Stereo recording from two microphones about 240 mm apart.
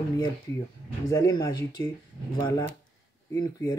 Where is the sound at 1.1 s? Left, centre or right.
Centre.